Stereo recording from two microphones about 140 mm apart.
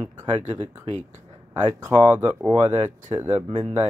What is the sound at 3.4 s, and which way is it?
Speech, 45° right (ahead or behind).